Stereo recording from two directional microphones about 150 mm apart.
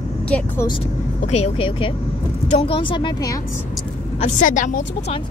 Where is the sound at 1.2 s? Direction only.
45° left (ahead or behind); by 3.3 s 30° left (ahead or behind).